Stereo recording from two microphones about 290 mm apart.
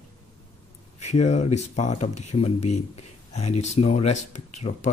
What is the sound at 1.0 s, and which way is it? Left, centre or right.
Speech, left.